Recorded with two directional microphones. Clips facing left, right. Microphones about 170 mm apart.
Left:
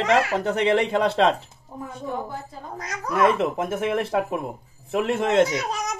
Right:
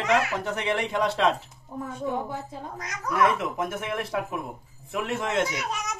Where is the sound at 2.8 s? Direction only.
30° left (ahead or behind).